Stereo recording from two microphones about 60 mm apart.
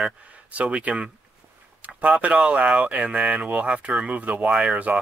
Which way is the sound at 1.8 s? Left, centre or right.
Right.